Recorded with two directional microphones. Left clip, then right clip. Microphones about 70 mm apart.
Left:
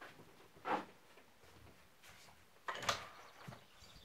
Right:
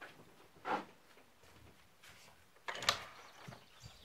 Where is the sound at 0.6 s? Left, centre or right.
Centre.